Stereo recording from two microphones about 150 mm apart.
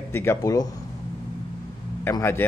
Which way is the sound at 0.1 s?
15° left (ahead or behind).